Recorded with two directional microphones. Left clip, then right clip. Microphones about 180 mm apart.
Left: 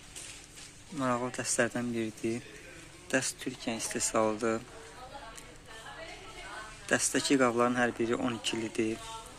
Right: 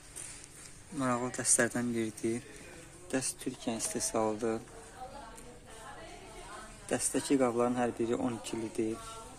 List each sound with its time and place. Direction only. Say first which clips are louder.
0.9 s speech: left 2 dB; centre (ahead or behind)
3.6 s speech: left 1 dB; 20° right (ahead or behind)
4.3 s speech: left 2 dB; centre (ahead or behind)
6.9 s speech: left 4 dB; centre (ahead or behind)